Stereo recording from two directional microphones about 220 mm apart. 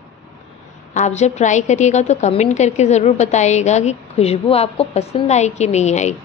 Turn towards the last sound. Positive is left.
turn(degrees=30)  # may be behind; listen again after turning